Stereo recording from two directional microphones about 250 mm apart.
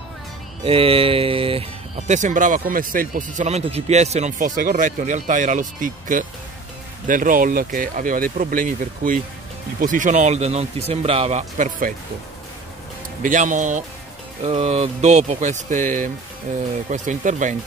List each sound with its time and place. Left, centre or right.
0.7 s speech: right
13.2 s speech: right